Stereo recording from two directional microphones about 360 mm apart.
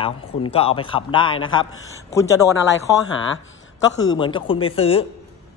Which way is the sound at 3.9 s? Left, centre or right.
Centre.